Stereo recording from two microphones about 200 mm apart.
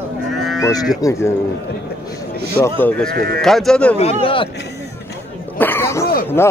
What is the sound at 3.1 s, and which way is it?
Speech, 50° right (ahead or behind).